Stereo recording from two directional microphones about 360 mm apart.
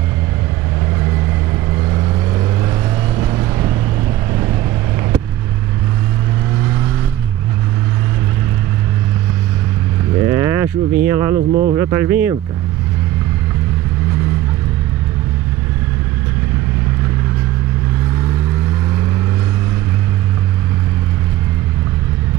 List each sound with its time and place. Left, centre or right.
10.3 s a sound: centre
11.3 s speech: right
11.7 s speech: centre